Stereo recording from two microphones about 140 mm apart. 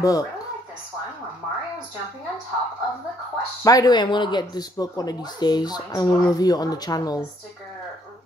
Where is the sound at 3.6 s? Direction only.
25° left (ahead or behind).